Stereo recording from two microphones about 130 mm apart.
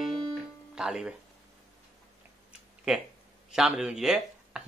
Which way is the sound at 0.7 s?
5° right (ahead or behind).